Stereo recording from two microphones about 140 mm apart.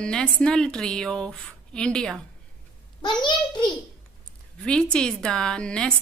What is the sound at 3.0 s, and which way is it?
Speech, 35° left (ahead or behind).